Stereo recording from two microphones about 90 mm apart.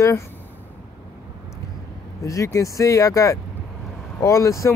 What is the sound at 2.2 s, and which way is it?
Speech, 35° left (ahead or behind).